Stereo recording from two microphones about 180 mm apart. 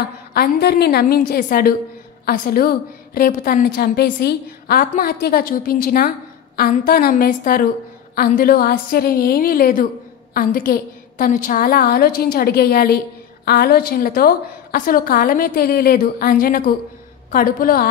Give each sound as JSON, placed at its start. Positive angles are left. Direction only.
{"t": 0.3, "sound": "a woman's voice", "side_deg": 60}